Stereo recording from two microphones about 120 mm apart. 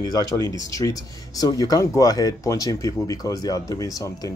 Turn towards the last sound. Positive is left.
turn(degrees=30)  # may be behind; listen again after turning